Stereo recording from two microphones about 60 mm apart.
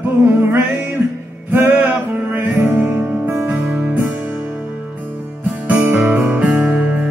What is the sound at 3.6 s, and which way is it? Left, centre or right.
Music, centre.